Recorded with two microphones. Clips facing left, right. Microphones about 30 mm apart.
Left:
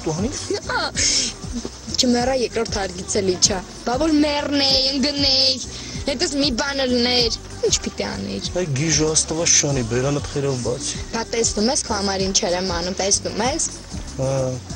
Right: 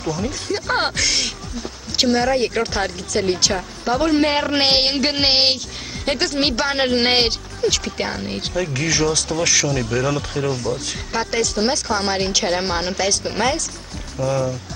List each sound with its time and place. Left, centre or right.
0.0 s speech: centre